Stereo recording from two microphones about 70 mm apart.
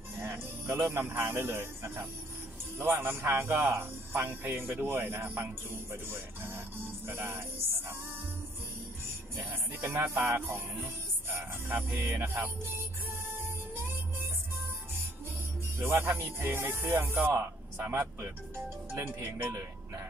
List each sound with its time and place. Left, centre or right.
0.2 s music: right
0.9 s a man's voice: right
9.0 s music: right
11.9 s a man's voice: right
15.8 s a man's voice: right
18.9 s a man's voice: right